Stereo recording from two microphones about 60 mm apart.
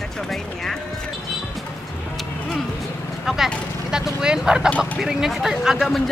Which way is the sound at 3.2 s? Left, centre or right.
Centre.